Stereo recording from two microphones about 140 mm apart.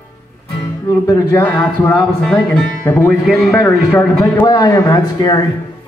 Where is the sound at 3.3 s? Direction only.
Centre (ahead or behind).